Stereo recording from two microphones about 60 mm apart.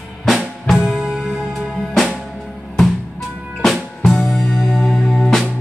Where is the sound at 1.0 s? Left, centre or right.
Centre.